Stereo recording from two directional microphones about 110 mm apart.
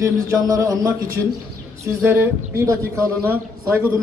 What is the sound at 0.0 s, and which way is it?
Speech, 30° right (ahead or behind).